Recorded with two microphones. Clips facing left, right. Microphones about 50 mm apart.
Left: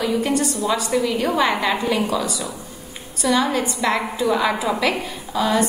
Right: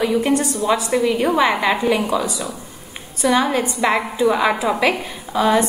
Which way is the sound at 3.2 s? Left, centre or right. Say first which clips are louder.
Right 2 dB; right.